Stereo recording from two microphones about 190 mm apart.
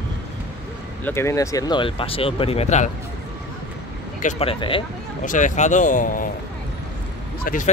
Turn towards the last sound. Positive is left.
turn(degrees=45)  # may be behind; listen again after turning